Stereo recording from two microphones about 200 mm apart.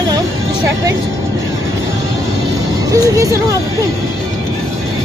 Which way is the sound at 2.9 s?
15° right (ahead or behind).